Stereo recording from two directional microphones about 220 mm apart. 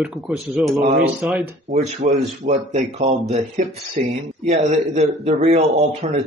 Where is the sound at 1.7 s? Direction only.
30° right (ahead or behind).